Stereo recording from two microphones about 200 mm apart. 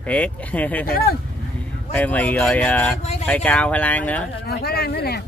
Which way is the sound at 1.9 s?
10° left (ahead or behind).